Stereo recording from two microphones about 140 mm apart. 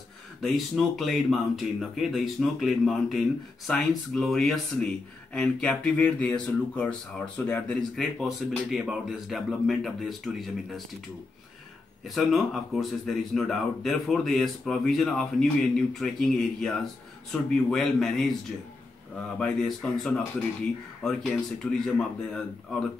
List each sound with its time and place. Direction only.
0.4 s speech: centre (ahead or behind)
12.1 s speech: centre (ahead or behind)
19.3 s speech: 5° left (ahead or behind)